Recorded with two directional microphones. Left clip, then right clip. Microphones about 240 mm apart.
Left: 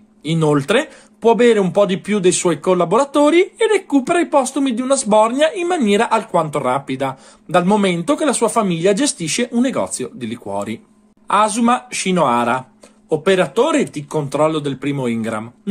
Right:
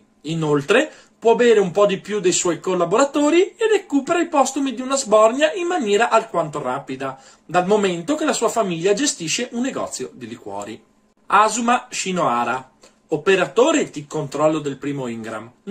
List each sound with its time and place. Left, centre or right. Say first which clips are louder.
0.2 s speech: left 4 dB; left
11.2 s speech: left 1 dB; left